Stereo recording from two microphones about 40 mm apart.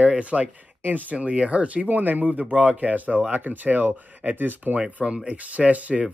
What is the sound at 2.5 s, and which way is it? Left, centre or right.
Speech, right.